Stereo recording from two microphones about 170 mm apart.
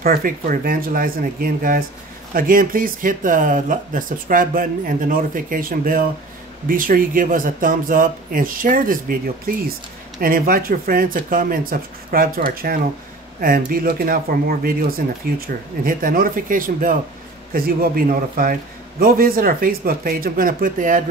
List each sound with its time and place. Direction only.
0.0 s a man's voice: 60° right (ahead or behind)
10.2 s a man's voice: 55° right (ahead or behind)